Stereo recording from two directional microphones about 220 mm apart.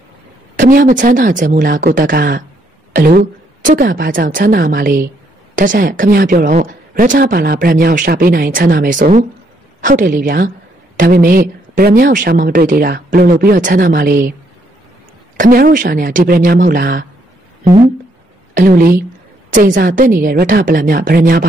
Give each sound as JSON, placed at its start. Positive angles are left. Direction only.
{"t": 0.6, "sound": "speech", "side_deg": -35}
{"t": 15.3, "sound": "speech", "side_deg": -40}
{"t": 18.5, "sound": "a woman's voice", "side_deg": -40}